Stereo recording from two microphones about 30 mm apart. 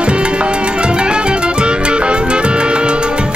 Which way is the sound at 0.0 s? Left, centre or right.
Right.